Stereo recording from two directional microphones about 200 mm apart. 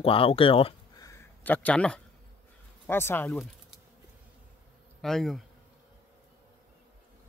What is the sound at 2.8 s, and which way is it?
Speech, 10° left (ahead or behind).